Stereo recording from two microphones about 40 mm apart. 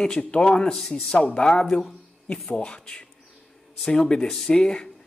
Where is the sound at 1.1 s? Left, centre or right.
Left.